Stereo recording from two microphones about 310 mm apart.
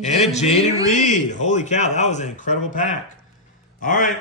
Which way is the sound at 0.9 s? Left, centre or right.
Left.